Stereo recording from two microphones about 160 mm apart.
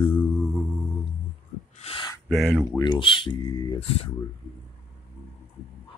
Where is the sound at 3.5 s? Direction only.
25° left (ahead or behind).